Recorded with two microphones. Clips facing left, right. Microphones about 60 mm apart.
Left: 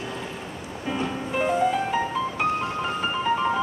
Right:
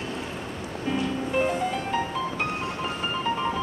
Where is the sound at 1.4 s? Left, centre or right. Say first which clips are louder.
Left 7 dB; centre.